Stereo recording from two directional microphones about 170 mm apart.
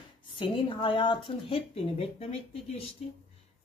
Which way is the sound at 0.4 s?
30° left (ahead or behind).